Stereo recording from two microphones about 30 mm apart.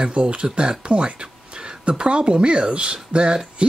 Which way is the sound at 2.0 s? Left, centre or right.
Right.